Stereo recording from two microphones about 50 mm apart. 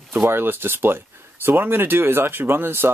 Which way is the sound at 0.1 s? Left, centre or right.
Right.